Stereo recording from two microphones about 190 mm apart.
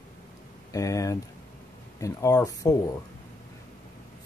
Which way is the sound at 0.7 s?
15° left (ahead or behind).